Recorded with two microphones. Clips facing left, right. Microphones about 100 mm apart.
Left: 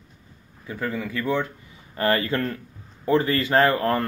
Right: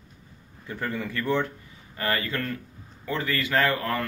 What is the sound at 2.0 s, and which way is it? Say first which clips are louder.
Speech: left 6 dB; 30° left (ahead or behind).